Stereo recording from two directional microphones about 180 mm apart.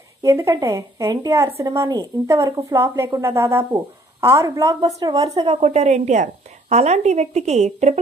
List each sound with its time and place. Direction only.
0.2 s a woman's voice: 15° right (ahead or behind)
5.3 s a woman's voice: 30° right (ahead or behind)